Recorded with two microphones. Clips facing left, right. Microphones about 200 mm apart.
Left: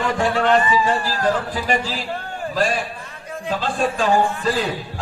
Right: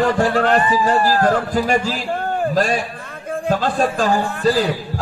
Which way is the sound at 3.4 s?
45° right (ahead or behind).